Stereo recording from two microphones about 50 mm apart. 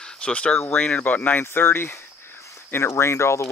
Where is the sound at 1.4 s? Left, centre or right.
Left.